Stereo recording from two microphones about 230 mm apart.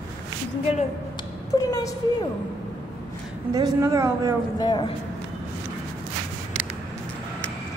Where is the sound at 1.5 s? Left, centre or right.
Centre.